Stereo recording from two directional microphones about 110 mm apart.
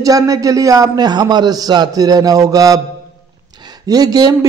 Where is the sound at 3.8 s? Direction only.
35° right (ahead or behind).